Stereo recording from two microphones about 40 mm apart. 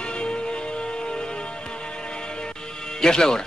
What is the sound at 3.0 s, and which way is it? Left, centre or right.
Speech, centre.